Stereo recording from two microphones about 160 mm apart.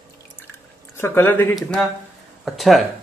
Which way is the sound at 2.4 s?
Centre (ahead or behind).